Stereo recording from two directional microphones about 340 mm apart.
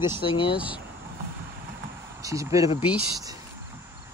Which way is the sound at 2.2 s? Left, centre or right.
Centre.